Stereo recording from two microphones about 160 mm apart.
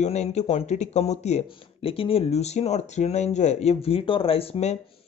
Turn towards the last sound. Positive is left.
turn(degrees=40)  # may be behind; listen again after turning